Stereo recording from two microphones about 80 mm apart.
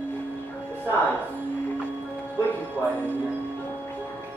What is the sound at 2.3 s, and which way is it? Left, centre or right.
Music, right.